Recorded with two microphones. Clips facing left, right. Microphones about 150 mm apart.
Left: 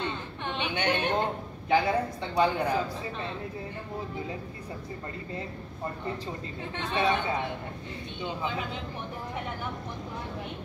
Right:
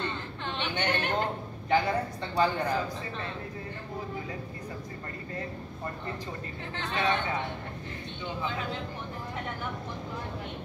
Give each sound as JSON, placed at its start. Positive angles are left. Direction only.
{"t": 0.6, "sound": "a man's voice", "side_deg": 10}
{"t": 6.9, "sound": "speech", "side_deg": 15}